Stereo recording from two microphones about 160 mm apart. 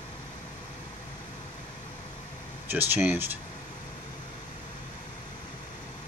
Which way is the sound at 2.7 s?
10° right (ahead or behind).